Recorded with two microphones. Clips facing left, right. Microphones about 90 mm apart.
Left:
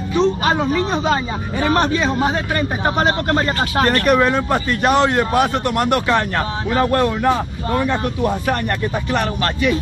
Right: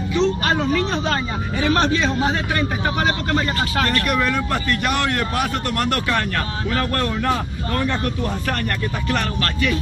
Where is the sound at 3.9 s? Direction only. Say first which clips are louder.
Left 6 dB; 40° left (ahead or behind).